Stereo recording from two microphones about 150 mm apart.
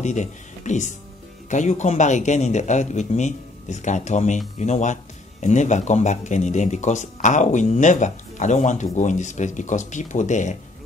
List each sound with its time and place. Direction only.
0.0 s speech: 50° left (ahead or behind)